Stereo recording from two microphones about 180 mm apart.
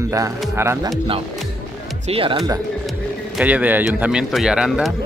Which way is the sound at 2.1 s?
30° right (ahead or behind).